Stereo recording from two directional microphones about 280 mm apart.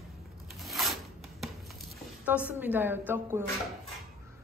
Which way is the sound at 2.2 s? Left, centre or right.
Centre.